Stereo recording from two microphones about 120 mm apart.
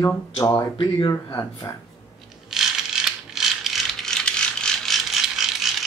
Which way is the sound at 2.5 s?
5° right (ahead or behind).